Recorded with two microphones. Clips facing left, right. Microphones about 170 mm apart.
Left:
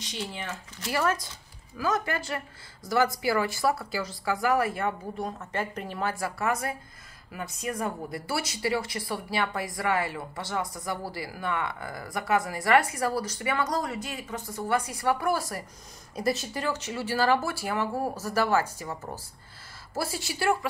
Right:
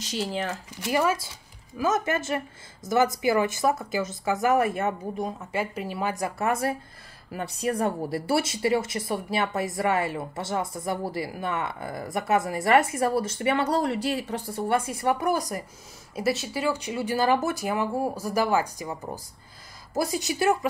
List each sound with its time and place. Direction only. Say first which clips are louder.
0.7 s speech: right 3 dB; 15° right (ahead or behind)
1.8 s speech: right 3 dB; 20° right (ahead or behind)
5.1 s speech: right 3 dB; 10° right (ahead or behind)
16.2 s speech: right 2 dB; 5° right (ahead or behind); by 20.5 s 20° right (ahead or behind)